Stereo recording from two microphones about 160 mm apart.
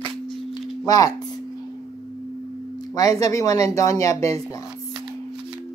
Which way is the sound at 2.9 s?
20° left (ahead or behind).